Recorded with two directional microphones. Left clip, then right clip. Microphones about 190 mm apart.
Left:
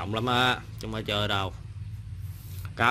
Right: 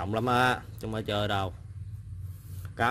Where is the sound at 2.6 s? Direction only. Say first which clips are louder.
Left 3 dB; 5° right (ahead or behind).